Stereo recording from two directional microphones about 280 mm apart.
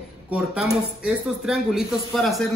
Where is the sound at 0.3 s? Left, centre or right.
Centre.